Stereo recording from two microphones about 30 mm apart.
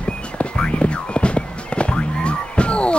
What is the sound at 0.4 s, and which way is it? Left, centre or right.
Music, left.